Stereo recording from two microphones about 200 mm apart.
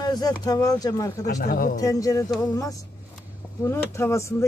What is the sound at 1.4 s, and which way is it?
Speech, 45° left (ahead or behind).